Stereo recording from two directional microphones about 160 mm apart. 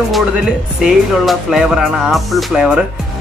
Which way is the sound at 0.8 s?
5° right (ahead or behind).